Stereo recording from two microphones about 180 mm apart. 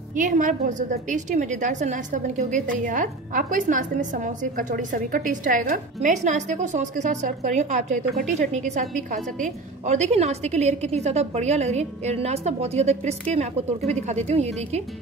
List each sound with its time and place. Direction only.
0.1 s a woman's voice: 45° right (ahead or behind)